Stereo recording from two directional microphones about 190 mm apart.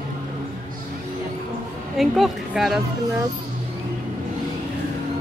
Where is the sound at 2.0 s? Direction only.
Centre (ahead or behind).